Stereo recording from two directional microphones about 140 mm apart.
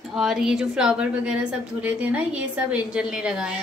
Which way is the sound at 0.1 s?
5° right (ahead or behind).